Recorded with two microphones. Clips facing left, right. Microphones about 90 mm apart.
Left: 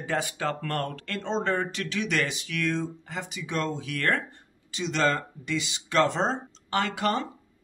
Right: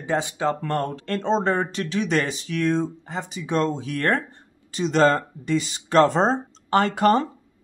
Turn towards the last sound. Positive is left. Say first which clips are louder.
# right 8 dB
turn(degrees=-40)  # may be behind; listen again after turning